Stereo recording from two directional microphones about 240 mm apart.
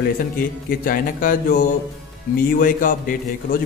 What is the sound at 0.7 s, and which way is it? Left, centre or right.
A man's voice, left.